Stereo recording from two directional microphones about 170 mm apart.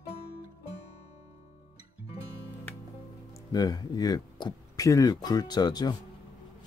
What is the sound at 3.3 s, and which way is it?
Speech, 20° left (ahead or behind).